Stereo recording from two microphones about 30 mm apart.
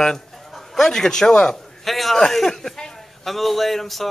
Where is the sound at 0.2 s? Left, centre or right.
Centre.